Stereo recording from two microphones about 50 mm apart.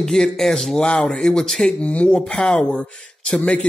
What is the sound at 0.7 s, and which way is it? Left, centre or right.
Speech, centre.